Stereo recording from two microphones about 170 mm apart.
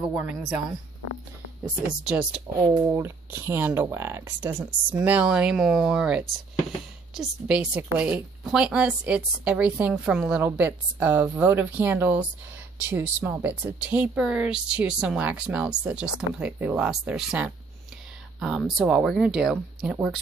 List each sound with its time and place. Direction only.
0.1 s a woman's voice: 10° right (ahead or behind)
1.6 s a woman's voice: 5° right (ahead or behind)
2.7 s a woman's voice: 15° right (ahead or behind)